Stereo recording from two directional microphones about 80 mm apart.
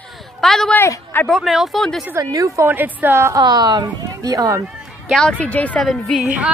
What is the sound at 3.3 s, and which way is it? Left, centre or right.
A woman's voice, right.